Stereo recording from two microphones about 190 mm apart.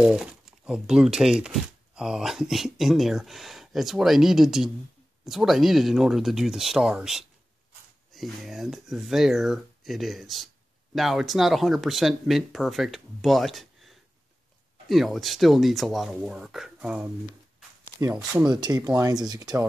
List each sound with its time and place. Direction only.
0.0 s speech: 5° right (ahead or behind)
18.1 s speech: 5° right (ahead or behind)
18.5 s speech: 20° right (ahead or behind)